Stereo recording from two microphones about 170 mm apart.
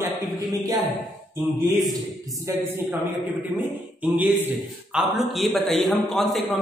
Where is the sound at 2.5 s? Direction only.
15° right (ahead or behind).